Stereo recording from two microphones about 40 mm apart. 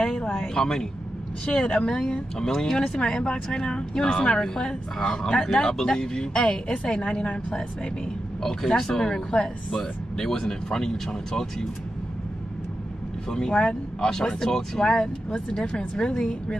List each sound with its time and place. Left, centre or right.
0.0 s a sound: centre
1.4 s a woman's voice: left
8.4 s a woman's voice: centre
9.7 s a woman's voice: centre
13.3 s a woman's voice: centre